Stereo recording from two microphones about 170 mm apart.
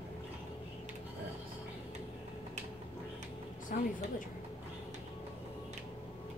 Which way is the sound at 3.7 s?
55° left (ahead or behind).